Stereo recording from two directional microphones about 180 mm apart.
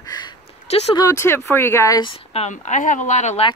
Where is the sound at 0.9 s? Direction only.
20° left (ahead or behind); by 3.4 s 40° left (ahead or behind).